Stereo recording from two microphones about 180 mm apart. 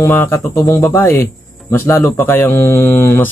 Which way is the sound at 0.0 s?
10° left (ahead or behind).